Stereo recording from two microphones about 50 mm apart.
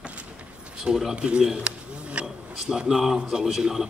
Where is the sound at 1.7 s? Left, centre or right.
Right.